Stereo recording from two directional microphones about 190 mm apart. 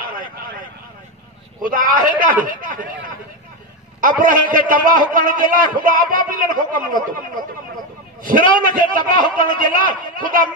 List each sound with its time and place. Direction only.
1.6 s a man's voice: 45° right (ahead or behind)
4.0 s a man's voice: 45° right (ahead or behind)